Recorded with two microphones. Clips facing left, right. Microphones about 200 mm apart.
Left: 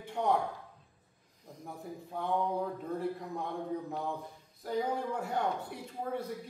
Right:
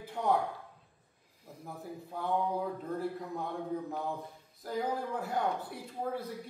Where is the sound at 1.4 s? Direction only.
5° right (ahead or behind).